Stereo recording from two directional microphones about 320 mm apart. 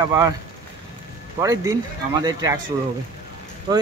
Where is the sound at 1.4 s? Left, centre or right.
Centre.